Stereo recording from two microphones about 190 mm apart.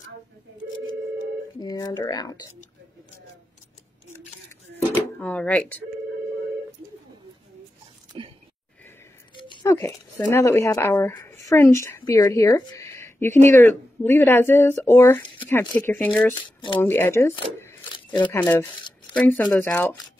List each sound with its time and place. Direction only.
1.6 s speech: 20° left (ahead or behind)
5.2 s speech: 5° left (ahead or behind)
8.1 s a sound: 30° right (ahead or behind)
9.3 s speech: 25° left (ahead or behind); by 20.0 s 5° left (ahead or behind)